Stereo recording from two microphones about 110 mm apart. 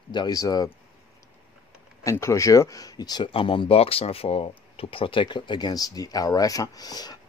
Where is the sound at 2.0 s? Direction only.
25° left (ahead or behind).